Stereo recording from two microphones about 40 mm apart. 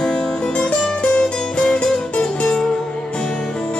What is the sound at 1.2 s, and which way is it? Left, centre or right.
Music, centre.